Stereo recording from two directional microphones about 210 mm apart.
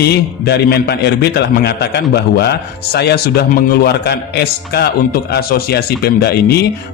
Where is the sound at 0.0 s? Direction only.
50° left (ahead or behind).